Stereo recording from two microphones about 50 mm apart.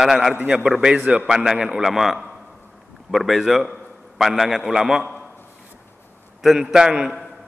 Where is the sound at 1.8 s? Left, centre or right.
Centre.